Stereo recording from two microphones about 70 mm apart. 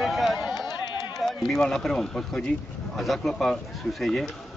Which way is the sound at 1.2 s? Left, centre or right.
Centre.